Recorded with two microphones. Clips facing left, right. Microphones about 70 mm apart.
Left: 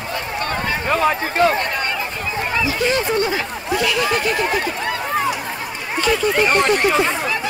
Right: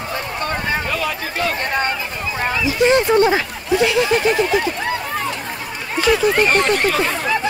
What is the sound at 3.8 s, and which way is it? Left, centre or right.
Speech, right.